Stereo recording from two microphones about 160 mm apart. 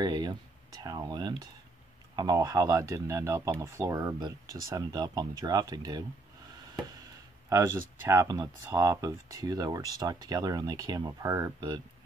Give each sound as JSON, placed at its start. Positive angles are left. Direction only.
{"t": 0.0, "sound": "speech", "side_deg": -25}
{"t": 7.4, "sound": "speech", "side_deg": -15}